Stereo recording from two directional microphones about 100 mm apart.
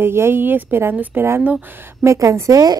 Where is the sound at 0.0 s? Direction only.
25° right (ahead or behind).